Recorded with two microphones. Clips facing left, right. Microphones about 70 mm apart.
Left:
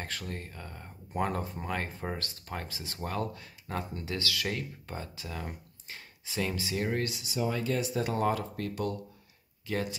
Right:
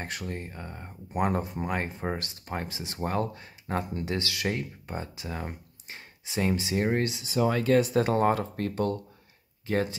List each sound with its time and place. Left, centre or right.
0.0 s speech: right
7.3 s speech: right